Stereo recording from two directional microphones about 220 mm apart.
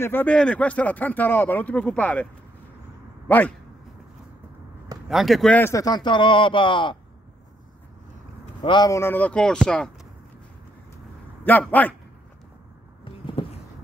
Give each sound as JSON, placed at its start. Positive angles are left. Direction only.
{"t": 0.0, "sound": "speech", "side_deg": 10}
{"t": 3.3, "sound": "speech", "side_deg": 5}
{"t": 5.1, "sound": "a man's voice", "side_deg": 0}
{"t": 8.6, "sound": "speech", "side_deg": 20}
{"t": 11.4, "sound": "speech", "side_deg": 5}
{"t": 13.0, "sound": "a sound", "side_deg": 25}